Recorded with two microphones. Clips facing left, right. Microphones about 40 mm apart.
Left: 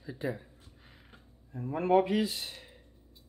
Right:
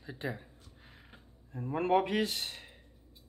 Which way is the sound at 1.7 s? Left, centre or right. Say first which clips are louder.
Left 2 dB; right.